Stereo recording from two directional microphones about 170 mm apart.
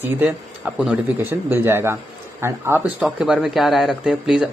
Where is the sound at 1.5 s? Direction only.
15° right (ahead or behind).